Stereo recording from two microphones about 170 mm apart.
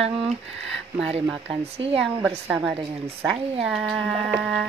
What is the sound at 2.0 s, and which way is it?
Speech, 10° right (ahead or behind).